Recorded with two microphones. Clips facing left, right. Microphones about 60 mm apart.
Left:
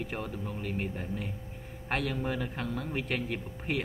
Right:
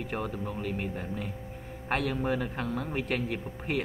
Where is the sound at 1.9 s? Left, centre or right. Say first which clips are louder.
Right 3 dB; centre.